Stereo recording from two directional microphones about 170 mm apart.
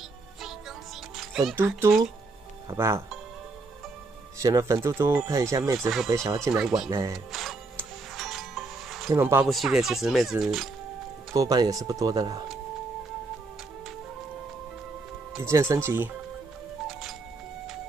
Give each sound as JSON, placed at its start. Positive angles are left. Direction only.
{"t": 0.4, "sound": "music", "side_deg": 0}
{"t": 1.5, "sound": "speech", "side_deg": -10}
{"t": 4.4, "sound": "speech", "side_deg": -20}
{"t": 5.8, "sound": "speech", "side_deg": 0}
{"t": 6.0, "sound": "speech", "side_deg": -15}
{"t": 6.5, "sound": "speech", "side_deg": 0}
{"t": 6.9, "sound": "speech", "side_deg": -20}
{"t": 8.2, "sound": "music", "side_deg": 0}
{"t": 9.1, "sound": "speech", "side_deg": -10}
{"t": 9.5, "sound": "speech", "side_deg": 0}
{"t": 11.3, "sound": "speech", "side_deg": -20}
{"t": 15.3, "sound": "speech", "side_deg": -15}